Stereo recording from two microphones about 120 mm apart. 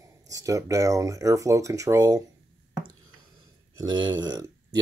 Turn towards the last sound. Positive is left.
turn(degrees=-35)  # may be behind; listen again after turning